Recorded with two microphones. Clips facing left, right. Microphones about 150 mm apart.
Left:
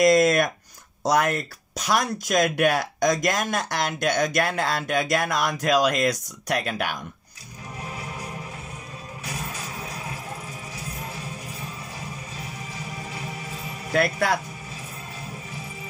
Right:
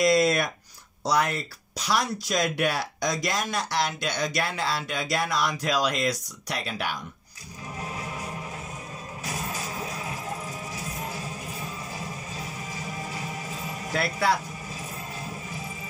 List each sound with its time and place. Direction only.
0.0 s a sound: 50° left (ahead or behind)
1.0 s speech: 50° left (ahead or behind)
9.2 s music: 40° right (ahead or behind)
13.9 s speech: 55° left (ahead or behind)